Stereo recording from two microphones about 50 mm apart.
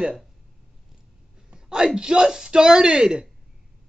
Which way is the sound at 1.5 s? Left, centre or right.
Centre.